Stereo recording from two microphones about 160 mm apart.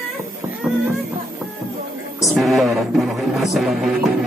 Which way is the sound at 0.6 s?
5° right (ahead or behind).